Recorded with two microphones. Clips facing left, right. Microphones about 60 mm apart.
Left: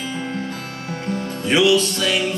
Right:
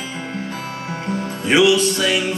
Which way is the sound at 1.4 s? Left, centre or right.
Right.